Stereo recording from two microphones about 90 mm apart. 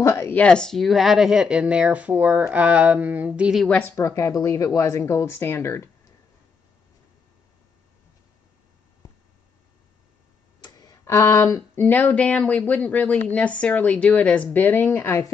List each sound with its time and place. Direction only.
0.0 s speech: 30° left (ahead or behind)
0.4 s speech: 10° left (ahead or behind); by 3.5 s 15° right (ahead or behind)
3.6 s speech: 15° left (ahead or behind)
3.9 s speech: 35° left (ahead or behind)
10.6 s tick: 45° left (ahead or behind)
11.1 s speech: 30° left (ahead or behind)